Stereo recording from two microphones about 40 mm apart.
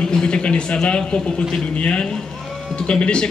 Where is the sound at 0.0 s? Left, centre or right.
Left.